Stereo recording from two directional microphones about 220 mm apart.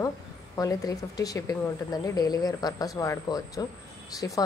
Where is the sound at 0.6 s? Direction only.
15° left (ahead or behind).